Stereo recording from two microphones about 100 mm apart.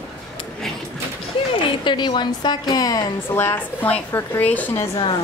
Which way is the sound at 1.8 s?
50° left (ahead or behind).